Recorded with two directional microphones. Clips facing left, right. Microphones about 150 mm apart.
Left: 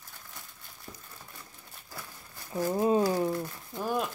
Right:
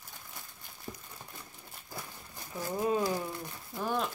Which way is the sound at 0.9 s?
15° right (ahead or behind).